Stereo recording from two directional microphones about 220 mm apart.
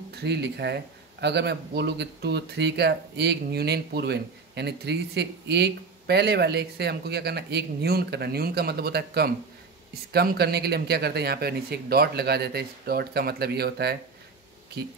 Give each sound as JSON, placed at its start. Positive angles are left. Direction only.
{"t": 0.1, "sound": "speech", "side_deg": -50}